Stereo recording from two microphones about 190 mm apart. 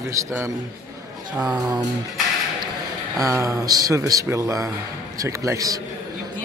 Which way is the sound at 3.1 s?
15° right (ahead or behind).